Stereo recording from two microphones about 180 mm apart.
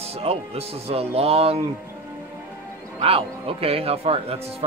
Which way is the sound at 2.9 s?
35° right (ahead or behind).